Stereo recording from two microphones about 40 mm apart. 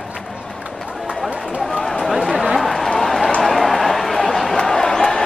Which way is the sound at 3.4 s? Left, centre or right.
Centre.